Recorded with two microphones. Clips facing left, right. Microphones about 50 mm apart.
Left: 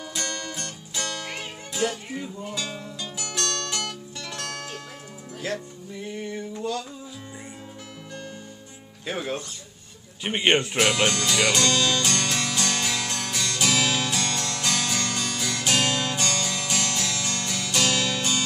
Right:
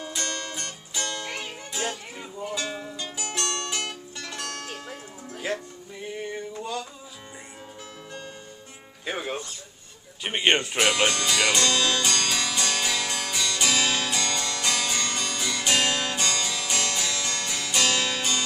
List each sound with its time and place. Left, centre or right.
0.2 s music: right
1.7 s music: centre
5.4 s music: centre
9.0 s speech: centre
10.2 s speech: centre
11.6 s music: right
12.2 s music: centre
15.8 s music: right
16.2 s music: centre